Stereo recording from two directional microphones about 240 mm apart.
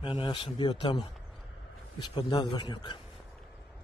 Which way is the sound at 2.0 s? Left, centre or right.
Centre.